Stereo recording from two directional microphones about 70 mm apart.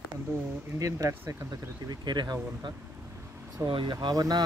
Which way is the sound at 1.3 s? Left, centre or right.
Right.